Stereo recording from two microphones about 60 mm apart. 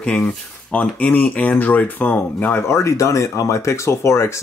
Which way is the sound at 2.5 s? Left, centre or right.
Left.